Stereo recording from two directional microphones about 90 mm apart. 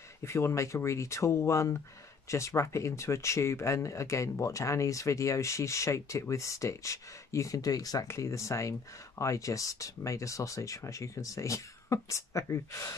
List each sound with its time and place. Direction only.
0.2 s speech: 30° left (ahead or behind)